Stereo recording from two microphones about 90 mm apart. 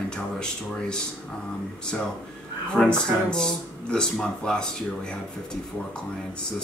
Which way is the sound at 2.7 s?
10° left (ahead or behind).